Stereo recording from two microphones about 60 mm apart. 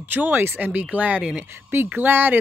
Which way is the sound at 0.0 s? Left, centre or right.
Right.